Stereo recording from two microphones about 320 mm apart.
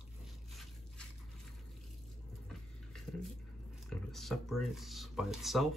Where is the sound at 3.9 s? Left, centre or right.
Centre.